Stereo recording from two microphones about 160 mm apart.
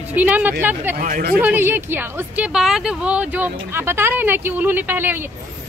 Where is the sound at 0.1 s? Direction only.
10° right (ahead or behind).